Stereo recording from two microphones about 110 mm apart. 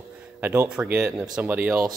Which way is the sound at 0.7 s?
10° right (ahead or behind).